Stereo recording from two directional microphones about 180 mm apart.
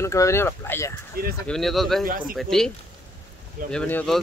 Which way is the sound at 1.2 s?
55° right (ahead or behind).